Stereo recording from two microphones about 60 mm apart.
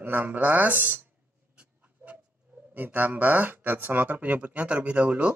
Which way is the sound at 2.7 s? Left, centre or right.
Right.